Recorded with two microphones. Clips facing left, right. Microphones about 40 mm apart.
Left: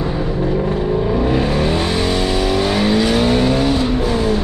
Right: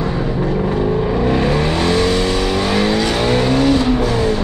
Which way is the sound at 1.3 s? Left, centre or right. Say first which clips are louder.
Right 1 dB; centre.